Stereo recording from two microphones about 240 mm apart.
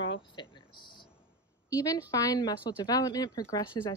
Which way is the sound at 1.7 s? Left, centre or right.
Centre.